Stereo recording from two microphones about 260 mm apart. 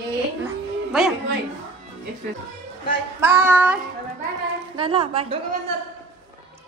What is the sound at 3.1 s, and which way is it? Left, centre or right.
Child singing, centre.